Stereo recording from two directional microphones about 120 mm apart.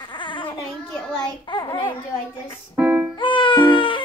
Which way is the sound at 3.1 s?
45° left (ahead or behind).